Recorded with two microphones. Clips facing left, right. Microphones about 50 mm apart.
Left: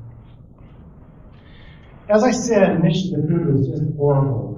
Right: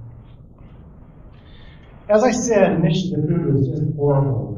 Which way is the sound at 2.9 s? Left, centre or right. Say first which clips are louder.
Even; right.